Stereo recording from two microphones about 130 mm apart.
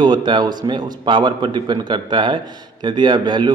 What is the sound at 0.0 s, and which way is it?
A man's voice, 35° right (ahead or behind).